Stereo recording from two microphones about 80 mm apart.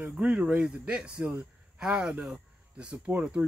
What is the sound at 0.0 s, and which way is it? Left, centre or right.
Speech, centre.